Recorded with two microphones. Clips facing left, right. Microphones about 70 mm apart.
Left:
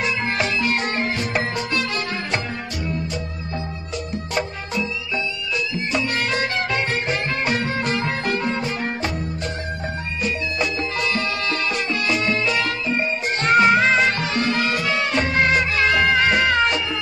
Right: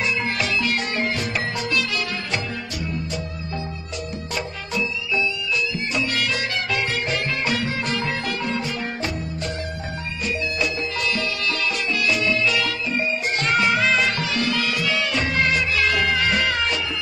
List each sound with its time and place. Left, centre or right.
0.0 s music: left
4.4 s music: left
10.2 s music: left